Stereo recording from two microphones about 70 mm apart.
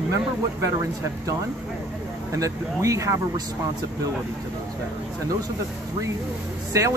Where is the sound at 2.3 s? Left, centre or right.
Right.